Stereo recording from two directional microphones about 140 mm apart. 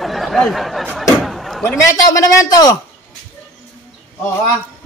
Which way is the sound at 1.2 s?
Centre (ahead or behind).